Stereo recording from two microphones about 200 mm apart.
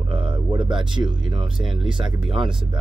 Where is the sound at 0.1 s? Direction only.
25° right (ahead or behind).